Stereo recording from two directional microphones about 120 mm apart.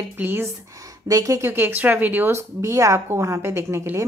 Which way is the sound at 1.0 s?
30° right (ahead or behind).